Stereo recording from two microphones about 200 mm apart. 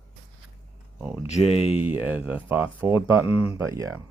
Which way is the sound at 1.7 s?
10° right (ahead or behind).